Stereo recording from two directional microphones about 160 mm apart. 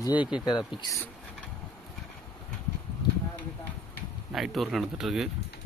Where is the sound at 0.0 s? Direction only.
30° left (ahead or behind).